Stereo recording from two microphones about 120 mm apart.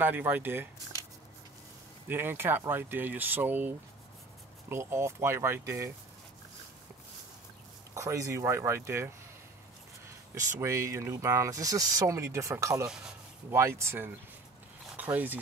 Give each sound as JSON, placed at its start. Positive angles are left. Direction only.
{"t": 0.0, "sound": "speech", "side_deg": -15}
{"t": 2.0, "sound": "speech", "side_deg": -20}
{"t": 7.9, "sound": "speech", "side_deg": -25}
{"t": 10.3, "sound": "speech", "side_deg": -25}